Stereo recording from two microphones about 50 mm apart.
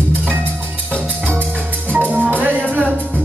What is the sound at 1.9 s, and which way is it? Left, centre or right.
Music, right.